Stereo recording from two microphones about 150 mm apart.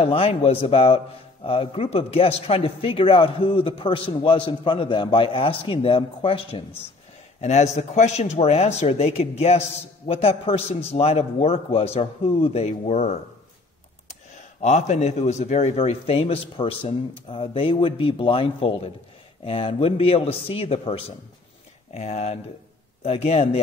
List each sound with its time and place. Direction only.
0.0 s a man's voice: 40° left (ahead or behind)
7.3 s a man's voice: 45° left (ahead or behind)
14.6 s a man's voice: 50° left (ahead or behind)